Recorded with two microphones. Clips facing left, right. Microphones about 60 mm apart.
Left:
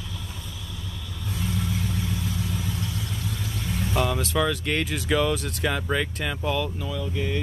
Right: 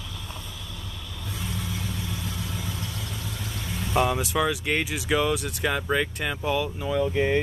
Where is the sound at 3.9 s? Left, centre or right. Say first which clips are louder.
Right 2 dB; centre.